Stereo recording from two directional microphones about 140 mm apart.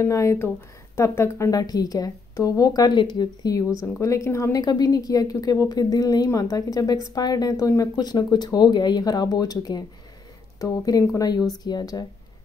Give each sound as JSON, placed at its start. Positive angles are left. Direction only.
{"t": 0.0, "sound": "a woman's voice", "side_deg": 20}